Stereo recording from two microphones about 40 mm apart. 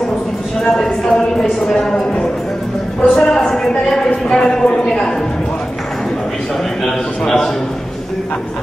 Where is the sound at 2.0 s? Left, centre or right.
Centre.